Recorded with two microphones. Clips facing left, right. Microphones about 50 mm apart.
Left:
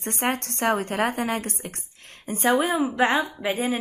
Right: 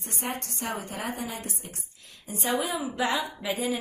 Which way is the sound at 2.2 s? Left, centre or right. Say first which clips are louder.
Left 7 dB; left.